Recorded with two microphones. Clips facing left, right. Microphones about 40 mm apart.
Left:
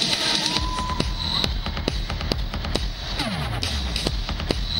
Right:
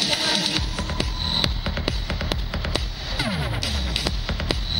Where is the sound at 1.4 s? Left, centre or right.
Right.